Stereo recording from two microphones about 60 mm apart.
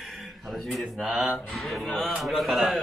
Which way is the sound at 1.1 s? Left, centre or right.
Centre.